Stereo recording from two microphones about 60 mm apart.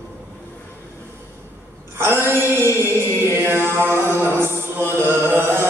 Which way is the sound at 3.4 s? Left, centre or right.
Right.